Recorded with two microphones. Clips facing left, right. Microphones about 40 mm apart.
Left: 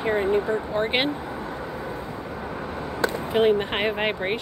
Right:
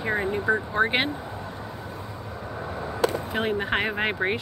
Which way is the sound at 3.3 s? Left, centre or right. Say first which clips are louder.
Left 5 dB; centre.